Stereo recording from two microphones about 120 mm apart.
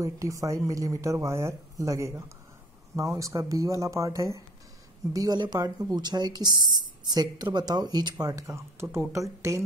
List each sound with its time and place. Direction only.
0.0 s speech: 25° right (ahead or behind)
8.8 s speech: 10° right (ahead or behind)
9.1 s speech: 25° right (ahead or behind)